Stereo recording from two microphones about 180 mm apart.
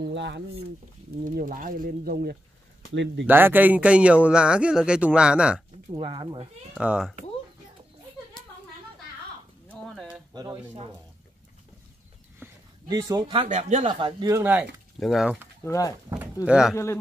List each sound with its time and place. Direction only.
0.0 s speech: 75° right (ahead or behind)
1.2 s speech: 50° right (ahead or behind)
2.9 s speech: 90° right
3.3 s speech: 10° right (ahead or behind)
5.9 s speech: 30° right (ahead or behind)
6.7 s speech: 5° right (ahead or behind)
9.7 s a sound: centre (ahead or behind)
10.3 s speech: 20° right (ahead or behind)
12.4 s a sound: 10° right (ahead or behind)
12.8 s speech: 25° right (ahead or behind); by 13.8 s 40° right (ahead or behind)
13.8 s speech: 25° right (ahead or behind); by 15.4 s 5° right (ahead or behind)
15.6 s speech: 15° left (ahead or behind)
16.4 s speech: 5° right (ahead or behind)
16.7 s a man's voice: 15° left (ahead or behind)